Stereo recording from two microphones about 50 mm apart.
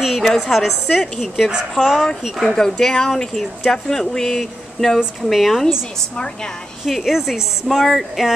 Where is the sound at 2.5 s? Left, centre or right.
Centre.